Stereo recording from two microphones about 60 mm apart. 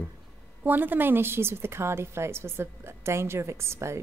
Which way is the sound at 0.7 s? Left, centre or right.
Right.